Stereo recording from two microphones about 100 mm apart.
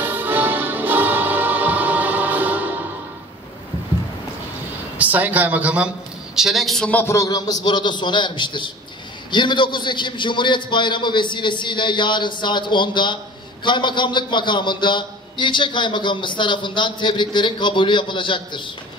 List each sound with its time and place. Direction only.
0.0 s music: 20° right (ahead or behind)
4.9 s a man's voice: 15° right (ahead or behind)
6.3 s a man's voice: 5° right (ahead or behind)
6.9 s a man's voice: 20° left (ahead or behind)
7.2 s a man's voice: 40° left (ahead or behind)